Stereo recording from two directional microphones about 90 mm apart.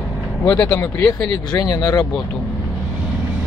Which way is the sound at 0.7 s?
30° left (ahead or behind).